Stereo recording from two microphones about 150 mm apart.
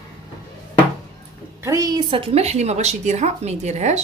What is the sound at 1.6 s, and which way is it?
A woman's voice, 20° right (ahead or behind).